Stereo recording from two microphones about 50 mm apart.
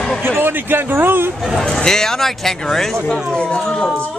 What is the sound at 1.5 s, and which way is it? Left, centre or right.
Speech, centre.